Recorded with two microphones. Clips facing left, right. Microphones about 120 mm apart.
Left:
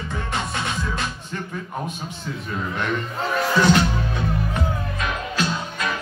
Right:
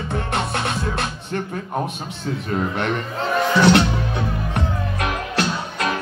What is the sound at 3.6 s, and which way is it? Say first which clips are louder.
Speech: right 3 dB; 70° right (ahead or behind).